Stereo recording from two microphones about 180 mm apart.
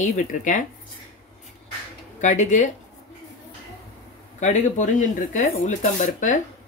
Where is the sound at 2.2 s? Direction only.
40° left (ahead or behind).